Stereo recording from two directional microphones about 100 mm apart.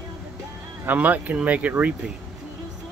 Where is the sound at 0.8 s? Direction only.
15° right (ahead or behind).